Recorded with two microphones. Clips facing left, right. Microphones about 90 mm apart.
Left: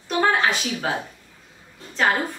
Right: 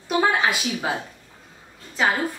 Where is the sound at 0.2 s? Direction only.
10° right (ahead or behind).